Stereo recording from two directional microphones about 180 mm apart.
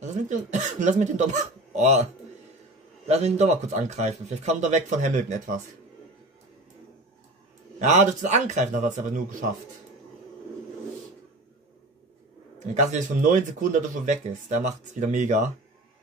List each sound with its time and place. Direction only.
0.0 s speech: 40° right (ahead or behind)
3.1 s speech: 35° right (ahead or behind)
7.8 s speech: 45° right (ahead or behind)
12.5 s speech: 45° right (ahead or behind)